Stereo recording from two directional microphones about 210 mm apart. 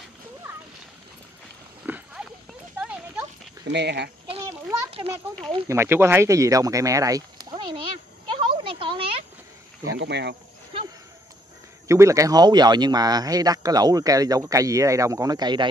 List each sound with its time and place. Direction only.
1.9 s horse: 10° right (ahead or behind)
2.8 s clip-clop: 5° right (ahead or behind)
3.6 s speech: 55° right (ahead or behind)
5.4 s speech: 20° right (ahead or behind)
8.4 s a sound: 25° right (ahead or behind)
9.9 s speech: 55° right (ahead or behind)
11.9 s speech: 15° right (ahead or behind)